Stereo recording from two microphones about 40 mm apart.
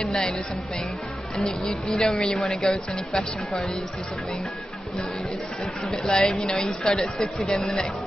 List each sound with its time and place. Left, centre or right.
1.7 s speech: centre
6.0 s speech: centre
6.8 s speech: centre
7.2 s speech: centre